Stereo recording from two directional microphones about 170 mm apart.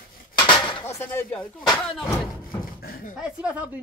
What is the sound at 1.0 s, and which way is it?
Speech, 10° left (ahead or behind).